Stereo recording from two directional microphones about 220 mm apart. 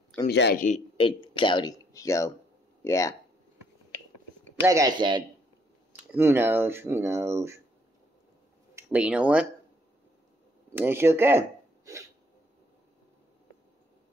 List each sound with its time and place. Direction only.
0.3 s speech: 50° left (ahead or behind)
0.7 s speech: 25° left (ahead or behind)
4.6 s speech: 15° right (ahead or behind)
5.9 s speech: 10° right (ahead or behind)
8.7 s speech: 5° right (ahead or behind)
10.7 s speech: 10° right (ahead or behind)